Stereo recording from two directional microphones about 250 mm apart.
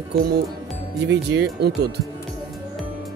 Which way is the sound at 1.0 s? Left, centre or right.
Right.